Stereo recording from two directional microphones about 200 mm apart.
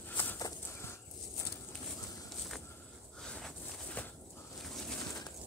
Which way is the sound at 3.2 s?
5° left (ahead or behind).